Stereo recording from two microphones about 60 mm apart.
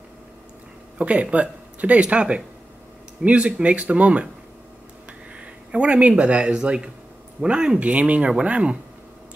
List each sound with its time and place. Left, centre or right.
0.9 s speech: right
5.3 s speech: centre